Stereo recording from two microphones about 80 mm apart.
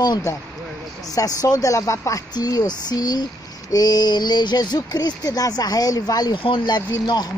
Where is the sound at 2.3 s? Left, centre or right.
Left.